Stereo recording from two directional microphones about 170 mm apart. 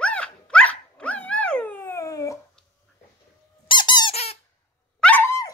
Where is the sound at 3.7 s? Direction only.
25° left (ahead or behind).